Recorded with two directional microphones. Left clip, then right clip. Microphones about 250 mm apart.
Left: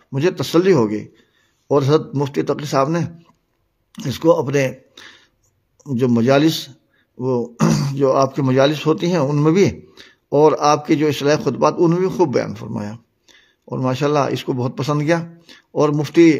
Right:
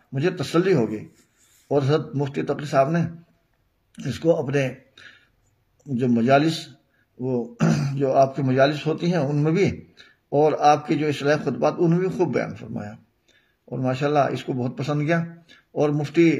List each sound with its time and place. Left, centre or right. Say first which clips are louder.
0.1 s speech: left 6 dB; left